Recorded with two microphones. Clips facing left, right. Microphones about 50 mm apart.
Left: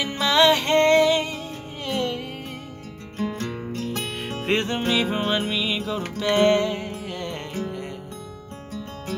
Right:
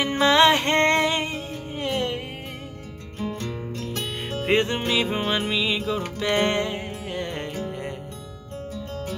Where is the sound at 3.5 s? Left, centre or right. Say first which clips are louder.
Left 2 dB; left.